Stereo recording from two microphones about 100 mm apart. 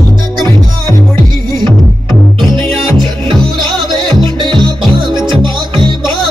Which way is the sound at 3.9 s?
55° right (ahead or behind).